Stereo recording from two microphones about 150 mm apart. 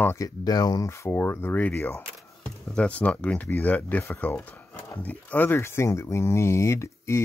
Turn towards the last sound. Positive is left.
turn(degrees=20)  # may be behind; listen again after turning